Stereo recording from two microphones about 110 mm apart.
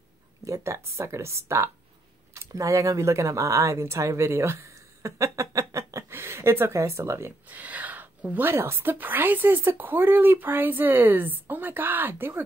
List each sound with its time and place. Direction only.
0.5 s speech: 25° right (ahead or behind)